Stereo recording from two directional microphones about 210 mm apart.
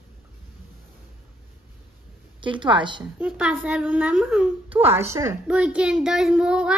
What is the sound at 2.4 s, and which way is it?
Speech, 20° right (ahead or behind).